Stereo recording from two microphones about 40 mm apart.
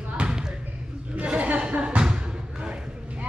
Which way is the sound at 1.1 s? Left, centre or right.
Right.